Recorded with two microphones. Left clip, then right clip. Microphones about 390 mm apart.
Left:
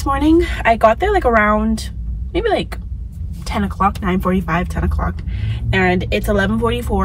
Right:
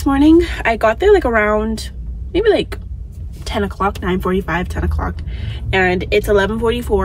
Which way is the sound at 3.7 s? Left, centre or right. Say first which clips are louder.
Left 5 dB; centre.